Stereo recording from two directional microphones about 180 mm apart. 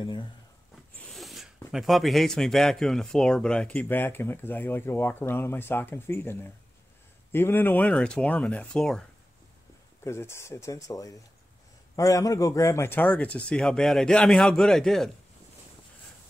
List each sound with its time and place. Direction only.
0.0 s speech: 25° left (ahead or behind)
1.1 s a sound: centre (ahead or behind)
1.7 s speech: centre (ahead or behind)
7.3 s speech: 10° left (ahead or behind)
10.0 s speech: 15° left (ahead or behind)